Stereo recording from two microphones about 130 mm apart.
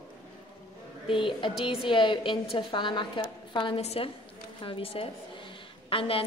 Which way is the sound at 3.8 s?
50° left (ahead or behind).